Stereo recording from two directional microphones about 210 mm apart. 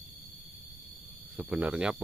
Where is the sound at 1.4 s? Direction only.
5° right (ahead or behind).